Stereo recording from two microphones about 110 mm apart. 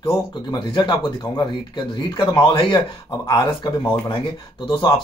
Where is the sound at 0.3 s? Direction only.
40° left (ahead or behind).